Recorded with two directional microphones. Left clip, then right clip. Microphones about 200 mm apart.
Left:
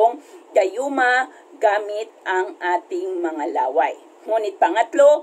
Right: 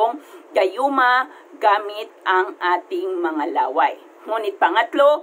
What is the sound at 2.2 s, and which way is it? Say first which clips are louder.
A man's voice: right 4 dB; 40° right (ahead or behind).